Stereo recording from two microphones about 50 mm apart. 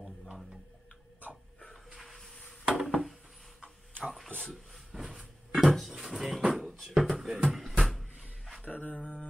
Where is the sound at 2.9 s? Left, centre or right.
Centre.